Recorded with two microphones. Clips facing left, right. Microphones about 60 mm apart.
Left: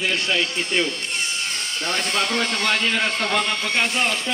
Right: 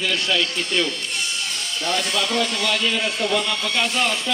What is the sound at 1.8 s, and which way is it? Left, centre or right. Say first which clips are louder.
Speech: right 1 dB; left.